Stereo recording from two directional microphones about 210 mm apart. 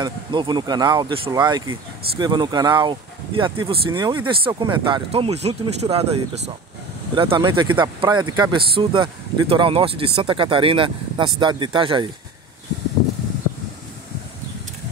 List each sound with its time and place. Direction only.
0.0 s speech: 20° right (ahead or behind)